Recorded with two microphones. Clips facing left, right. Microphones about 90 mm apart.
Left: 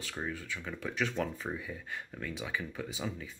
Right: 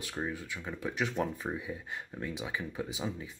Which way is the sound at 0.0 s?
15° right (ahead or behind).